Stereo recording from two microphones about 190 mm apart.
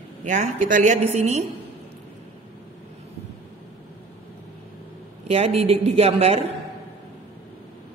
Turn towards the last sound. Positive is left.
turn(degrees=-35)  # may be behind; listen again after turning